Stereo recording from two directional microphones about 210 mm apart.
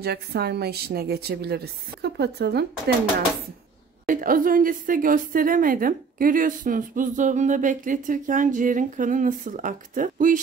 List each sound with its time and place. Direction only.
0.0 s a woman's voice: 50° right (ahead or behind)
4.1 s a woman's voice: 40° right (ahead or behind)